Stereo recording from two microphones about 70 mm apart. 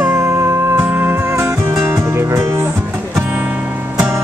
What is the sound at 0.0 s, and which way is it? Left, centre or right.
Music, right.